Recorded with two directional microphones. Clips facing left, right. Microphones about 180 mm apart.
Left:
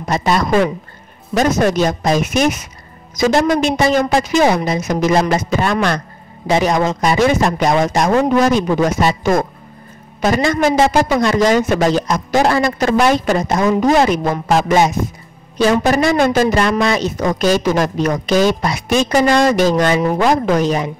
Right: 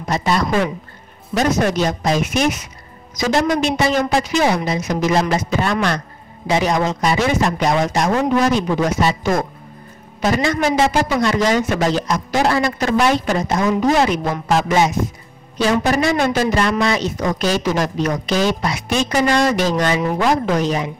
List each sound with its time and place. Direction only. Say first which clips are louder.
0.1 s a woman's voice: left 3 dB; 45° left (ahead or behind)